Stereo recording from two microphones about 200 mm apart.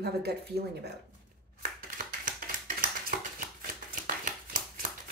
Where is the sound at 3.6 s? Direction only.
45° right (ahead or behind).